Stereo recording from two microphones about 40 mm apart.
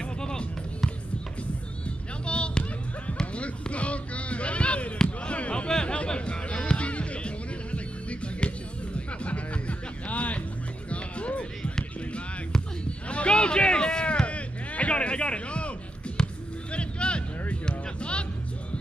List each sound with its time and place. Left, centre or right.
0.0 s music: left
3.3 s a sound: left
5.2 s basketball bounce: left
5.7 s a sound: centre
6.0 s music: left
10.9 s basketball bounce: left
13.1 s a sound: left
16.2 s basketball bounce: centre
16.7 s music: left